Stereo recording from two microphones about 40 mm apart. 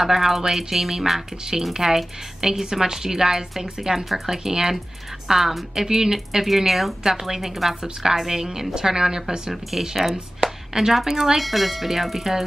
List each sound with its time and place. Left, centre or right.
0.0 s a woman's voice: centre
5.3 s a woman's voice: centre
7.0 s a woman's voice: centre
10.1 s a sound: centre
11.0 s speech: centre